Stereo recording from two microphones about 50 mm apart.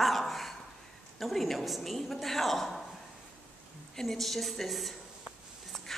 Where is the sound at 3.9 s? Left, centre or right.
Centre.